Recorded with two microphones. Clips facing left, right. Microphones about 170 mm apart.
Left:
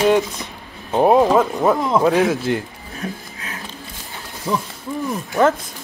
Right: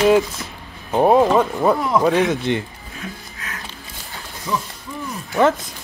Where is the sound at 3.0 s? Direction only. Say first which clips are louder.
Left 5 dB; 35° left (ahead or behind).